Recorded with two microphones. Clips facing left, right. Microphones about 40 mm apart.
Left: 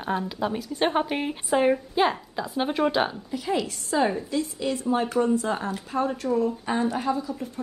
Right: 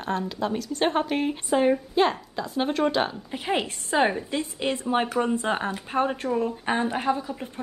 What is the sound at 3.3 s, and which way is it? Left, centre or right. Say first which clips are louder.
A woman's voice: even; right.